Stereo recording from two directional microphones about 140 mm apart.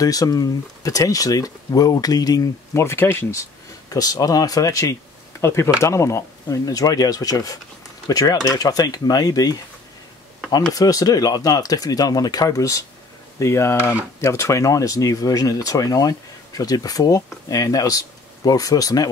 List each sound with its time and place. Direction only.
0.0 s speech: 25° left (ahead or behind)
10.7 s speech: 25° left (ahead or behind)